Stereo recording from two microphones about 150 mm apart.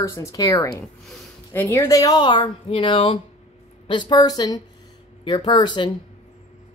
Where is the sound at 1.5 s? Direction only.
15° left (ahead or behind); by 5.9 s 30° left (ahead or behind).